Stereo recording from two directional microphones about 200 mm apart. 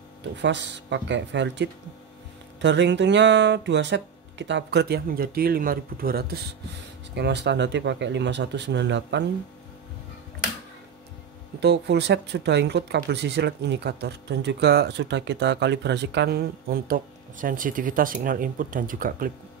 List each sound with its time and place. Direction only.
0.2 s speech: 60° right (ahead or behind)
11.6 s speech: 55° right (ahead or behind)